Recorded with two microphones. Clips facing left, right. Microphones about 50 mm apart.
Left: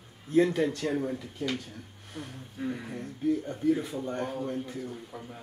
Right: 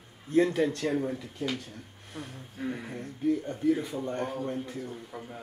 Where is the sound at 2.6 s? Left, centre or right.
Right.